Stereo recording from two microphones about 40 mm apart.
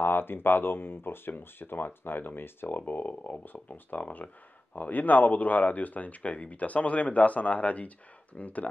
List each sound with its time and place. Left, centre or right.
0.0 s speech: left
2.8 s speech: left